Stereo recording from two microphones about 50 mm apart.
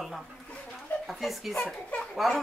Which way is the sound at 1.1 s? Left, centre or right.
Centre.